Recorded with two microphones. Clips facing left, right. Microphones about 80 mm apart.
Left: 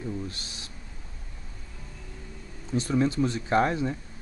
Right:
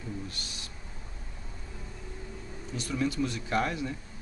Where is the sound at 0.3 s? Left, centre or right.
Left.